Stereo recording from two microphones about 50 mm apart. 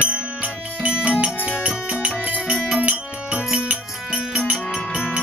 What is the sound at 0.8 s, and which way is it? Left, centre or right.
Music, right.